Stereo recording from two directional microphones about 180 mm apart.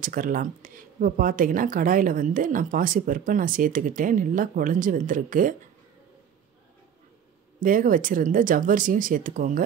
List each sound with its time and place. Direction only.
0.0 s speech: 50° right (ahead or behind)
7.6 s speech: 50° right (ahead or behind)